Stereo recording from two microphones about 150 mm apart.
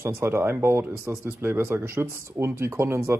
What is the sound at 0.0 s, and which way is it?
Speech, 15° right (ahead or behind).